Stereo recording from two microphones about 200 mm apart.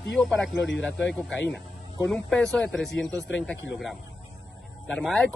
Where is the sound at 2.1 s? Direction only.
5° left (ahead or behind).